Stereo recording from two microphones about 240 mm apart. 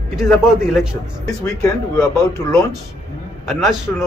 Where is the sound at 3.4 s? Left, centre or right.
Centre.